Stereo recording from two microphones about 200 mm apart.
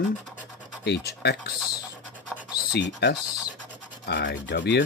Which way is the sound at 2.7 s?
60° left (ahead or behind).